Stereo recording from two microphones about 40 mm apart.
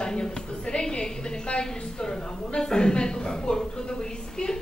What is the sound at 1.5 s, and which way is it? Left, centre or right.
A man's voice, centre.